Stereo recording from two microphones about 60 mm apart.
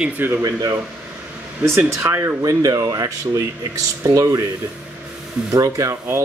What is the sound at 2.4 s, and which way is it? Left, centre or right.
Speech, right.